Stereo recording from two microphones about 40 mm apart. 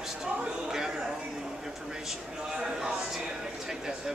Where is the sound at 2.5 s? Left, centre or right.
Centre.